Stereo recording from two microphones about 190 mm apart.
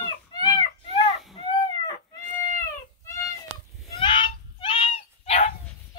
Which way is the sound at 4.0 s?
25° left (ahead or behind).